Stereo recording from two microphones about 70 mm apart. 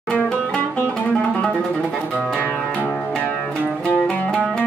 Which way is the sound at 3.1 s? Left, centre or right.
Centre.